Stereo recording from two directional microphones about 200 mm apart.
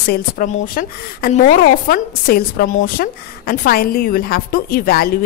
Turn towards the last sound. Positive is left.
turn(degrees=50)  # may be behind; listen again after turning